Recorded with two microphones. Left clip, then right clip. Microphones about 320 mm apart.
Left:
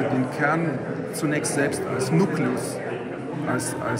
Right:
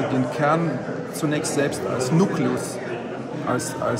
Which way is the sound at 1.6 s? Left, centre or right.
Right.